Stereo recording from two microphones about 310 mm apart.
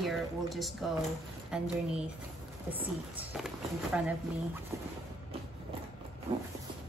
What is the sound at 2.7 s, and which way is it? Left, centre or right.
Speech, centre.